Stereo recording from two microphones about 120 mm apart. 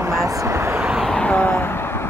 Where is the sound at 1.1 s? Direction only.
10° left (ahead or behind).